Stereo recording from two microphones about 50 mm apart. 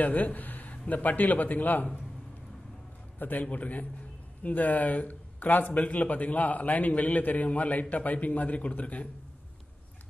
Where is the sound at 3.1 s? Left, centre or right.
Left.